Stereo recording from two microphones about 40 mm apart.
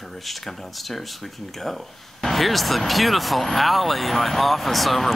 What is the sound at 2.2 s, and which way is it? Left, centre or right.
Speech, centre.